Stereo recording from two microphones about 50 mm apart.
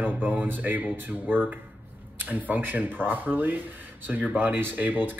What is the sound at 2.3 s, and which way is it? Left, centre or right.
Speech, right.